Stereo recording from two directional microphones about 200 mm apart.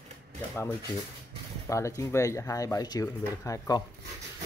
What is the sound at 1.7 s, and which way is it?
Speech, 15° left (ahead or behind).